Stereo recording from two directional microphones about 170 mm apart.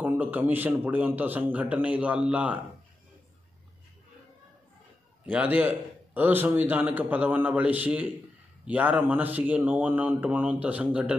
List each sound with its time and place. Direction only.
0.0 s a man's voice: 10° right (ahead or behind)
5.2 s a man's voice: 10° right (ahead or behind)